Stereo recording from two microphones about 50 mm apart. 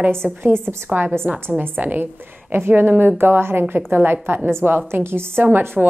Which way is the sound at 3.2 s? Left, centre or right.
Right.